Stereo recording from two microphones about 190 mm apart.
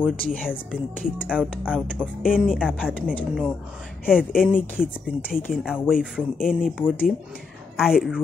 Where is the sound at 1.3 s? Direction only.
5° right (ahead or behind).